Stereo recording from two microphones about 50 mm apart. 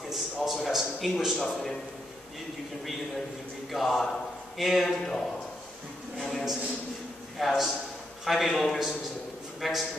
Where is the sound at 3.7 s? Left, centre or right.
Centre.